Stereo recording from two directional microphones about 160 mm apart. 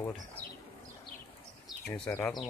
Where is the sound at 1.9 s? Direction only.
15° left (ahead or behind).